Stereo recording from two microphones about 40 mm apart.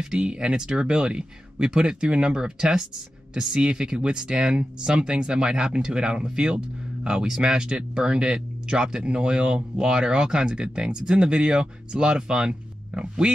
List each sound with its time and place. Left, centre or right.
0.0 s speech: centre